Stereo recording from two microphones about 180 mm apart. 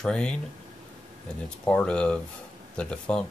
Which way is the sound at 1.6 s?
5° left (ahead or behind).